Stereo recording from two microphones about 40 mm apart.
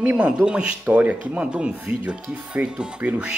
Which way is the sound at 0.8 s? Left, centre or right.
Right.